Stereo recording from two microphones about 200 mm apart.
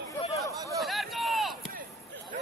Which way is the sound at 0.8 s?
Centre (ahead or behind).